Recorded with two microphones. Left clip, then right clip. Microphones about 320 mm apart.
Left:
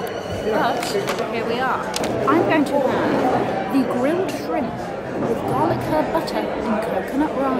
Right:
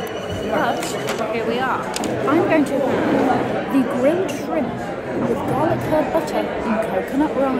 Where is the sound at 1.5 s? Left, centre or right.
Centre.